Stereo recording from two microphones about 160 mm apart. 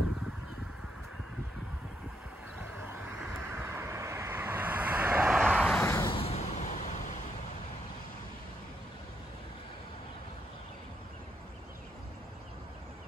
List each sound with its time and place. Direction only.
3.3 s vehicle: 15° right (ahead or behind)
5.5 s vehicle: 5° left (ahead or behind)
5.9 s a sound: 20° left (ahead or behind)
6.1 s vehicle: 40° left (ahead or behind)